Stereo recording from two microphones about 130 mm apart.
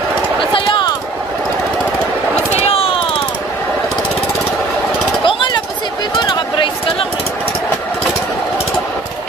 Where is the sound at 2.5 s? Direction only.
50° left (ahead or behind).